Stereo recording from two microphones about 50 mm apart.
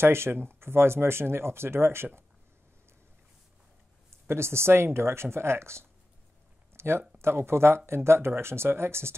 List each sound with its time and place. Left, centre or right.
0.0 s speech: right
4.3 s speech: right
6.7 s a sound: right
7.2 s speech: right